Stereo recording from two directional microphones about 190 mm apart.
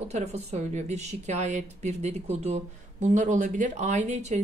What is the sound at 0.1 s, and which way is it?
Speech, 35° right (ahead or behind).